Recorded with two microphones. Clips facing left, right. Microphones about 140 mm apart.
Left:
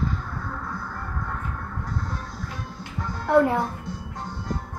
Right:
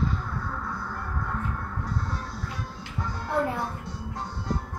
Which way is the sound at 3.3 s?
70° left (ahead or behind).